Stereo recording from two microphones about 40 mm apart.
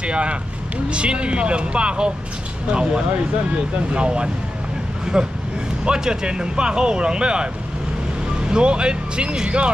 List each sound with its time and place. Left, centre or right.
0.0 s speech: right
5.1 s speech: centre
8.5 s speech: right